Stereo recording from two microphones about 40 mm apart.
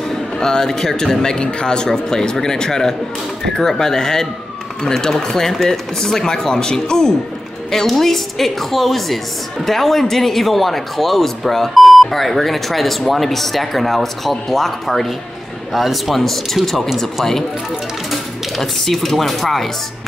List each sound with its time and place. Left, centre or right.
0.1 s a man's voice: centre
1.4 s a man's voice: left; by 19.7 s centre